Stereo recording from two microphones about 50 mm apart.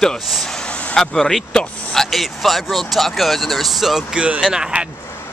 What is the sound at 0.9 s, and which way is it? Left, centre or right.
Speech, centre.